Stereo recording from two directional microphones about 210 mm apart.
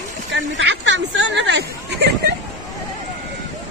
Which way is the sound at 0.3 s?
60° right (ahead or behind).